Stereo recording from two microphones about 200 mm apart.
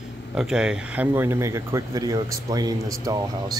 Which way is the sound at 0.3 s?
Centre (ahead or behind).